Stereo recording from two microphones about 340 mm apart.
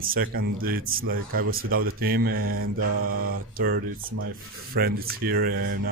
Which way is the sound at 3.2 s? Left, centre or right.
Right.